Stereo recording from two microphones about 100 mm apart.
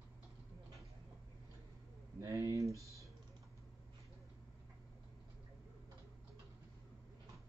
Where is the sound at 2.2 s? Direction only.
35° right (ahead or behind).